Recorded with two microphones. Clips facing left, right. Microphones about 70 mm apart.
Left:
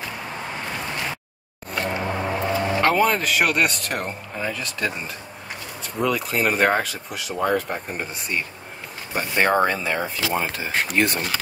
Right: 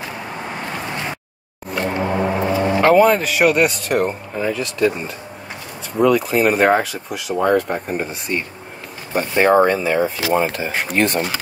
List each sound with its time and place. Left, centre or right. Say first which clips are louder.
1.7 s music: right 4 dB; centre
2.2 s music: right 5 dB; centre
2.8 s speech: right 8 dB; centre